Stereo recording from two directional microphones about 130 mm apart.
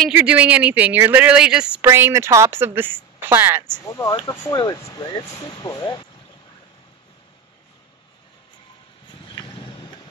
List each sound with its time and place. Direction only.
0.1 s a woman's voice: 10° right (ahead or behind)
1.8 s a woman's voice: 20° right (ahead or behind)
3.8 s speech: 25° left (ahead or behind)
9.2 s vehicle: 40° left (ahead or behind)